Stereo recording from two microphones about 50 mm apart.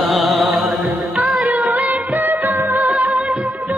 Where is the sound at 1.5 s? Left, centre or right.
Right.